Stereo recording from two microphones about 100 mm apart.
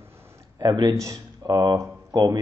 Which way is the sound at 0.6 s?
40° right (ahead or behind).